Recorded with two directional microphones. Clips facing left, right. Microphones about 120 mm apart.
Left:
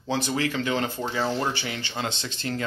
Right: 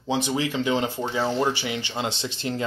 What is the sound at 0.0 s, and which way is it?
Speech, 20° right (ahead or behind).